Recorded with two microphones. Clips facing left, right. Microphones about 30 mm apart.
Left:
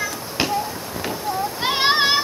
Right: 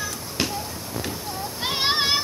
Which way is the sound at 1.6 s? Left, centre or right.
Centre.